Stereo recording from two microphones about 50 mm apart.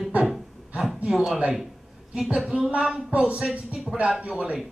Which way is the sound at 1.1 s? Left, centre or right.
Centre.